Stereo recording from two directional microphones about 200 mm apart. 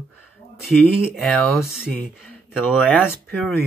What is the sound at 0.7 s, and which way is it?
Speech, centre (ahead or behind).